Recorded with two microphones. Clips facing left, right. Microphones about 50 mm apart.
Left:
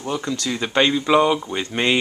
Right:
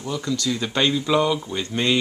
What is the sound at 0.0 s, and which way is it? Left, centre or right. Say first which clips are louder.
Speech: left 1 dB; left.